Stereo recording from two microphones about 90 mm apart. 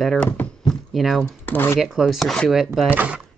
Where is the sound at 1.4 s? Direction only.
20° left (ahead or behind).